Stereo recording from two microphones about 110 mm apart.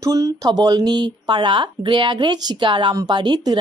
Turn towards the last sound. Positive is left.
turn(degrees=-40)  # may be behind; listen again after turning